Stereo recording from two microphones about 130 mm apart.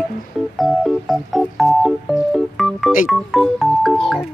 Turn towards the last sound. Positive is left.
turn(degrees=0)  # may be behind; listen again after turning